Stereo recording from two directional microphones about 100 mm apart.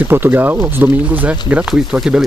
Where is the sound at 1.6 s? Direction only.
5° right (ahead or behind).